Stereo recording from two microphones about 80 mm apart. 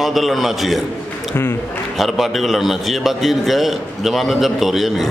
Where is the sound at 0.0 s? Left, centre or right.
Centre.